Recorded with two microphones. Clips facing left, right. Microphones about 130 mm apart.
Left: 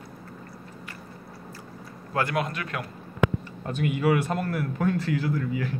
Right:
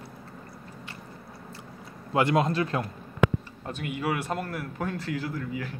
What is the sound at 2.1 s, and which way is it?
Speech, 25° right (ahead or behind).